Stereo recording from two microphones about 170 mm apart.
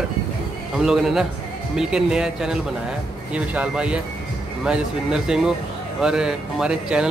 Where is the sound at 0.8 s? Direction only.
Centre (ahead or behind).